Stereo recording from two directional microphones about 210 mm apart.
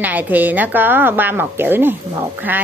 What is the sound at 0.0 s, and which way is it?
A woman's voice, 10° right (ahead or behind).